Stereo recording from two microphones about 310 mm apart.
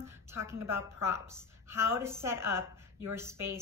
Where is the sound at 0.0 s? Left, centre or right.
Centre.